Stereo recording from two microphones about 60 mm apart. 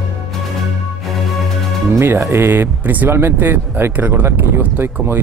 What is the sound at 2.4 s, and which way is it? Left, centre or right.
Speech, right.